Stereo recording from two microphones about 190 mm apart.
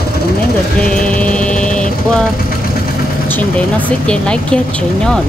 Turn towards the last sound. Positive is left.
turn(degrees=5)  # may be behind; listen again after turning